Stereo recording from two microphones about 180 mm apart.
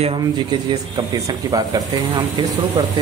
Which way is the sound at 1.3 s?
20° right (ahead or behind).